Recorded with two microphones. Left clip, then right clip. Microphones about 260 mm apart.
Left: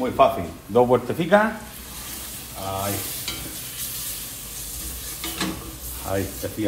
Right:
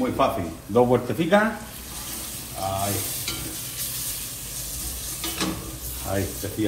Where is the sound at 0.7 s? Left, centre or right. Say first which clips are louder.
Left 2 dB; left.